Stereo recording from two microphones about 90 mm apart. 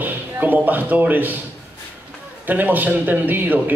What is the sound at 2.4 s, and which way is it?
A man's voice, 20° right (ahead or behind).